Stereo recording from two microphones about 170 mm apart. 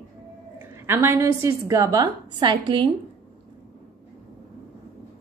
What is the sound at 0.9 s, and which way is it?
A woman's voice, 15° right (ahead or behind).